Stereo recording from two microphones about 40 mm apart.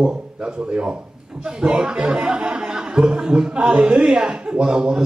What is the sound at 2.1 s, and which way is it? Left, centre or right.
Speech, right.